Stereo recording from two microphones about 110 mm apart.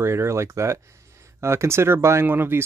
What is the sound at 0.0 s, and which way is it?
Speech, 25° right (ahead or behind).